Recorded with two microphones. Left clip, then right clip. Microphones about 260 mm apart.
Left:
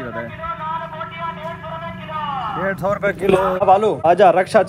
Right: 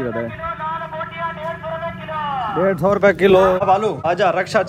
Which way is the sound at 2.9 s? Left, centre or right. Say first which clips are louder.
Right 6 dB; right.